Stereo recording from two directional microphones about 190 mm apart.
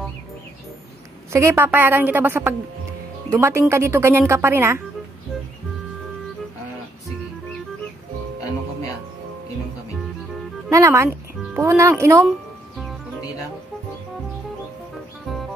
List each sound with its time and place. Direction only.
1.3 s a woman's voice: 15° right (ahead or behind)
10.7 s a woman's voice: 15° right (ahead or behind)